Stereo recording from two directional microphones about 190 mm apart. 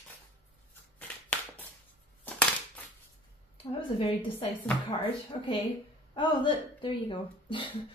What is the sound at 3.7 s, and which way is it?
A woman's voice, 30° left (ahead or behind).